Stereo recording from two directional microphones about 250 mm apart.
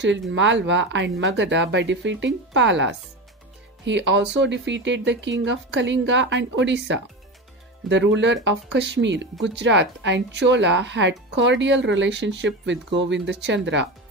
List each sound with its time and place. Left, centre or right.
0.3 s speech: right